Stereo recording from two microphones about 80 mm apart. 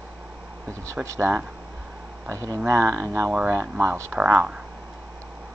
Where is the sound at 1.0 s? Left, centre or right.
Right.